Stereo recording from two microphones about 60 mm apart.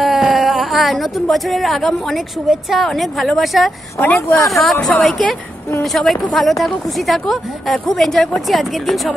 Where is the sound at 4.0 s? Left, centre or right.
Left.